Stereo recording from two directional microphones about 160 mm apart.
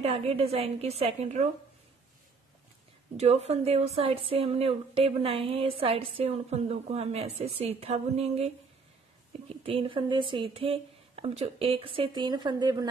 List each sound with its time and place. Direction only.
0.0 s a woman's voice: 40° right (ahead or behind)
3.2 s a woman's voice: 40° right (ahead or behind)
9.6 s a woman's voice: 35° right (ahead or behind)